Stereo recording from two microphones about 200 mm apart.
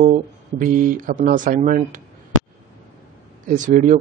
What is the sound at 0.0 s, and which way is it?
Speech, 40° right (ahead or behind).